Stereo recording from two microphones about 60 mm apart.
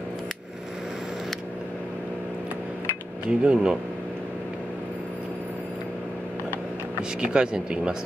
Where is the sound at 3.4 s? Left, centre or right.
Centre.